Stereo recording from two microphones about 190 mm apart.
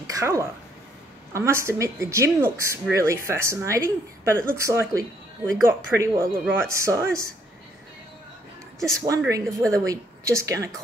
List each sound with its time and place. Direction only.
0.0 s a sound: 15° right (ahead or behind)
1.3 s speech: 15° right (ahead or behind)
8.7 s a woman's voice: centre (ahead or behind)
9.3 s speech: 15° right (ahead or behind)